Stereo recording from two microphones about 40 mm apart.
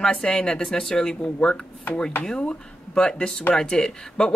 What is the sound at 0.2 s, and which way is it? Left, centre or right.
Speech, centre.